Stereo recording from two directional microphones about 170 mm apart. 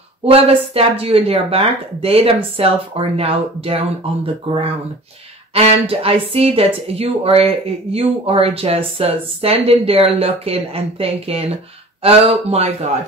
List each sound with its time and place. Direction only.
0.2 s a woman's voice: 35° right (ahead or behind)